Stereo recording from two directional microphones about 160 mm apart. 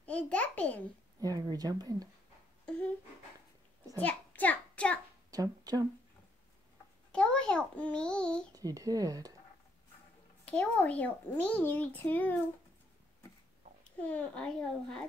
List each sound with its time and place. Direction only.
0.0 s a sound: 10° left (ahead or behind)
1.2 s speech: 20° right (ahead or behind)
2.6 s a sound: 10° left (ahead or behind)
4.0 s child singing: 10° left (ahead or behind)
5.3 s speech: 25° right (ahead or behind)
7.1 s a child's voice: 5° left (ahead or behind)
8.5 s speech: 20° right (ahead or behind)
10.5 s a child's voice: 10° left (ahead or behind)
13.9 s a child's voice: 10° left (ahead or behind)